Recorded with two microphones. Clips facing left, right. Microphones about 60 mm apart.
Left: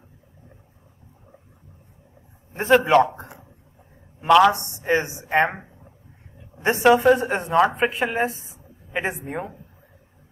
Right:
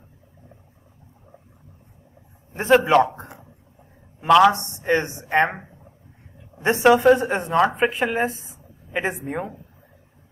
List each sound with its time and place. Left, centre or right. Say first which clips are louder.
2.5 s a man's voice: even; centre
6.6 s a woman's voice: right 1 dB; centre